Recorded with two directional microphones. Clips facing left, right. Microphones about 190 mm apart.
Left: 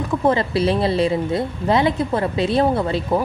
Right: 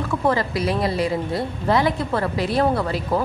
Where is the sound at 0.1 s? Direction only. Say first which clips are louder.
Left 3 dB; 20° left (ahead or behind).